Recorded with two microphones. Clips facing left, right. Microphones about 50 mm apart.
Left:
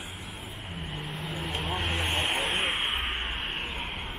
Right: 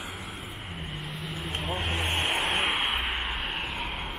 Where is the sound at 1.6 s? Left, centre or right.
Centre.